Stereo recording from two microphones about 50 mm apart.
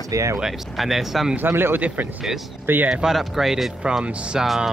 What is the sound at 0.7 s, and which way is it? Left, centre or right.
Speech, centre.